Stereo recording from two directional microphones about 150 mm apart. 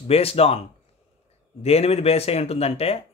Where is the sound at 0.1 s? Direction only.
40° left (ahead or behind).